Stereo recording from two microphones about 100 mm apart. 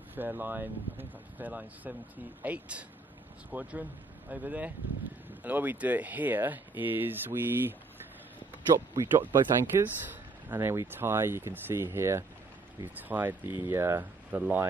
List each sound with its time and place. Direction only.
0.1 s speech: 20° right (ahead or behind)
8.7 s speech: 25° right (ahead or behind)